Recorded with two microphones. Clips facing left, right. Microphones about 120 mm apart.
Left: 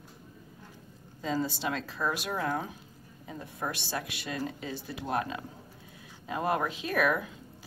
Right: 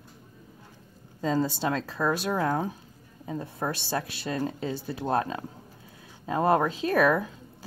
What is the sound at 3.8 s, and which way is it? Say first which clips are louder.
Speech: right 5 dB; 30° right (ahead or behind).